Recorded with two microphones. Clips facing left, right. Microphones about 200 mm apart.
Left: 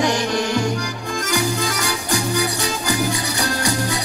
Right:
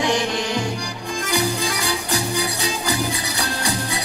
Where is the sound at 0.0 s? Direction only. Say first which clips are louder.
Left 2 dB; 45° left (ahead or behind).